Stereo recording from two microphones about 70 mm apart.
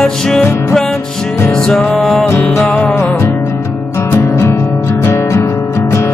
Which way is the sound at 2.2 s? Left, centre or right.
Left.